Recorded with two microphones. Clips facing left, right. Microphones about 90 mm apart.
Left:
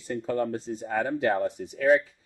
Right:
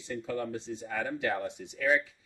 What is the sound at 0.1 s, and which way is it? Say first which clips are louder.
Speech: left 6 dB; 45° left (ahead or behind).